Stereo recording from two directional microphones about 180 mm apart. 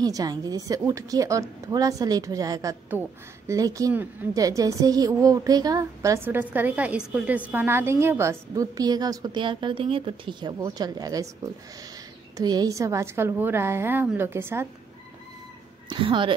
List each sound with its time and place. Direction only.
0.0 s a woman's voice: 20° right (ahead or behind)
12.4 s a woman's voice: 20° right (ahead or behind)
15.9 s a woman's voice: 25° right (ahead or behind)